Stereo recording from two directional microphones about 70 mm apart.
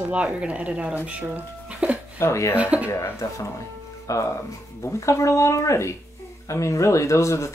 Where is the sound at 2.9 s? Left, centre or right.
Left.